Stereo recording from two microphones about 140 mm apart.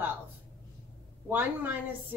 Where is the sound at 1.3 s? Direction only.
15° right (ahead or behind).